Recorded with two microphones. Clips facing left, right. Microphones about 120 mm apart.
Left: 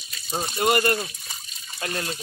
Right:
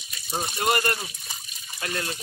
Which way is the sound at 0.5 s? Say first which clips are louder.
Left 4 dB; 20° left (ahead or behind).